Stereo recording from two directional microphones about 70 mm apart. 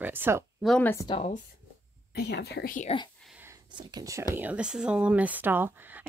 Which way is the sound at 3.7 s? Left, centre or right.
Right.